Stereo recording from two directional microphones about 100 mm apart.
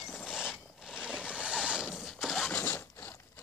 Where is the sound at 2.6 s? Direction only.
20° left (ahead or behind).